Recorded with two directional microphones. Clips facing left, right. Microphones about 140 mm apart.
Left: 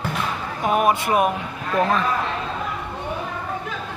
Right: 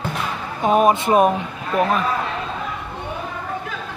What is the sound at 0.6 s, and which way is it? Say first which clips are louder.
Speech: right 4 dB; 25° right (ahead or behind).